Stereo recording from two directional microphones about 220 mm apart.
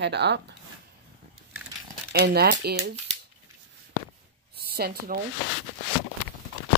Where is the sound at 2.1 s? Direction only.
45° right (ahead or behind).